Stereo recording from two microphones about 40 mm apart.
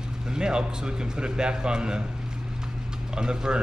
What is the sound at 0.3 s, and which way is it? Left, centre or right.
Speech, right.